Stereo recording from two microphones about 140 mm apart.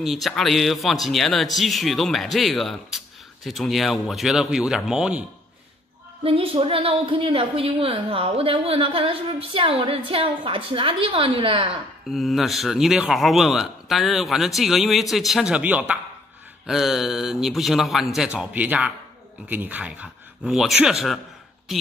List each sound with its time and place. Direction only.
0.0 s a man's voice: centre (ahead or behind)
6.2 s a woman's voice: 40° right (ahead or behind)
12.1 s a man's voice: centre (ahead or behind)